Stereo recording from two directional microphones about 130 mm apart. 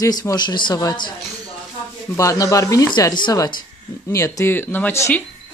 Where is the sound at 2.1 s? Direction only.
25° left (ahead or behind).